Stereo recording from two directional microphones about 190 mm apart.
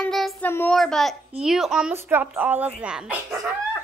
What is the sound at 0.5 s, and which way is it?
A child's voice, 5° left (ahead or behind).